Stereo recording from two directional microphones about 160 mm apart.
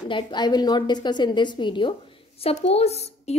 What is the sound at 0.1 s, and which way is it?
A woman's voice, 30° left (ahead or behind).